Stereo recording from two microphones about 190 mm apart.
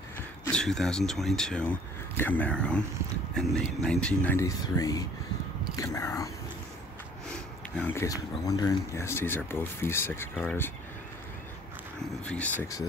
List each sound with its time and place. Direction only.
0.5 s speech: 5° left (ahead or behind)
7.7 s speech: 10° left (ahead or behind)
12.3 s speech: 5° left (ahead or behind)